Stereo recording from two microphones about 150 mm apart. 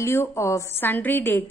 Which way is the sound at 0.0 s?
20° left (ahead or behind).